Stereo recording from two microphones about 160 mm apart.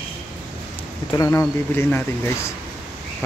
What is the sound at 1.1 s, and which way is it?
Speech, 15° left (ahead or behind).